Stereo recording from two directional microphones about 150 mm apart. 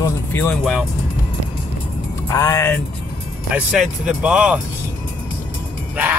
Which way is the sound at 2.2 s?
20° left (ahead or behind).